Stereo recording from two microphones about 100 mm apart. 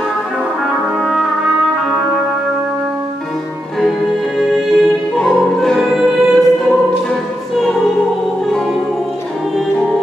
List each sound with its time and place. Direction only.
4.6 s music: centre (ahead or behind)